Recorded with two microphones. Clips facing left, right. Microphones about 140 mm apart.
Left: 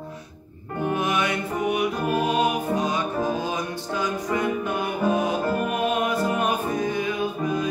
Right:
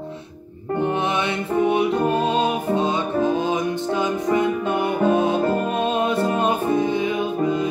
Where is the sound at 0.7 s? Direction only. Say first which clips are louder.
Right 2 dB; 25° right (ahead or behind).